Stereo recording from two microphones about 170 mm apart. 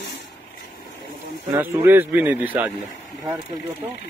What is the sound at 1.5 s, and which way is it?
Speech, 15° right (ahead or behind).